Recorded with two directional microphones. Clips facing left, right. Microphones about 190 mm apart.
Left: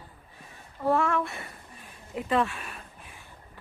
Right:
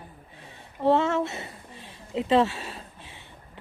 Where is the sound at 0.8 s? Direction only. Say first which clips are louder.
Right 3 dB; 25° right (ahead or behind).